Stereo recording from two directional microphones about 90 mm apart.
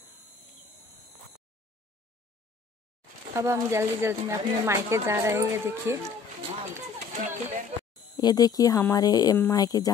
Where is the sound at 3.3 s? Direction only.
30° right (ahead or behind).